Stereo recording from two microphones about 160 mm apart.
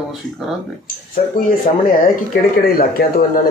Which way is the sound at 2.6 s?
70° left (ahead or behind).